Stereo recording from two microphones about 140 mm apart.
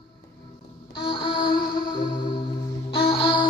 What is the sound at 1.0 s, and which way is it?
Music, 35° left (ahead or behind).